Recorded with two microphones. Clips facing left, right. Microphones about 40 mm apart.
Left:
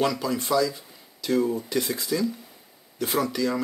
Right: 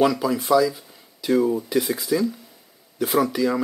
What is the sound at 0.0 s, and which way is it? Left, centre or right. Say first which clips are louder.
Speech: right 5 dB; centre.